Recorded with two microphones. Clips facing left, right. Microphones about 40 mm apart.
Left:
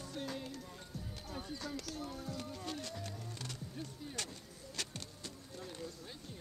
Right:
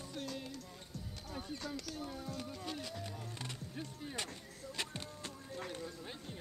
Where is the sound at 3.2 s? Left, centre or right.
Right.